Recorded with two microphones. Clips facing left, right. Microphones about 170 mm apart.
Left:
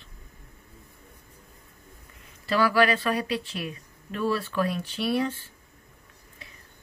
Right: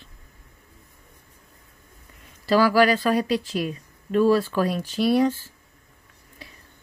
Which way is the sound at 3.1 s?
40° right (ahead or behind).